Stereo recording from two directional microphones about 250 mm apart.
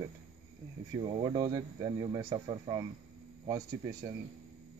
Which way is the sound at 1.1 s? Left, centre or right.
Centre.